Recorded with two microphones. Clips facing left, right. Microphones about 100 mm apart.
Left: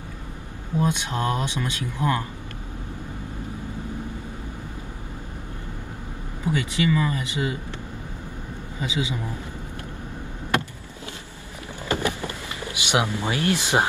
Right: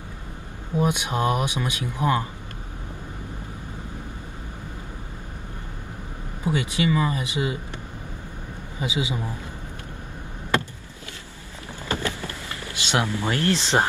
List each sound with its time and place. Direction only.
0.7 s speech: 15° right (ahead or behind)
6.4 s speech: 20° right (ahead or behind)
8.8 s speech: 20° right (ahead or behind)
11.9 s vehicle: 15° left (ahead or behind)